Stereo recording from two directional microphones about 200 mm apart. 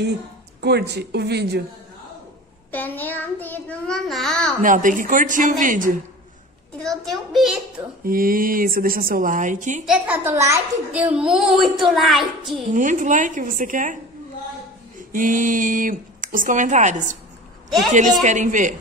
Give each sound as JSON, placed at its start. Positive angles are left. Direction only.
{"t": 0.6, "sound": "speech", "side_deg": -55}
{"t": 2.7, "sound": "a child's voice", "side_deg": 10}
{"t": 4.6, "sound": "speech", "side_deg": -40}
{"t": 6.8, "sound": "a child's voice", "side_deg": 0}
{"t": 8.0, "sound": "speech", "side_deg": -45}
{"t": 9.8, "sound": "a child's voice", "side_deg": -10}
{"t": 12.7, "sound": "speech", "side_deg": -40}
{"t": 15.1, "sound": "speech", "side_deg": -40}